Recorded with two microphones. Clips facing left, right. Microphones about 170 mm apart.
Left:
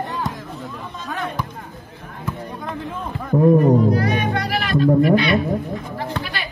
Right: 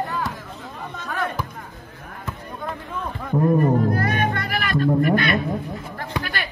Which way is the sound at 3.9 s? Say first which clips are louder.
Left 2 dB; 50° right (ahead or behind).